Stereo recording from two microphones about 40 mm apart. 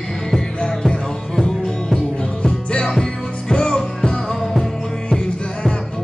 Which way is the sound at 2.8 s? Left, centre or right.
Centre.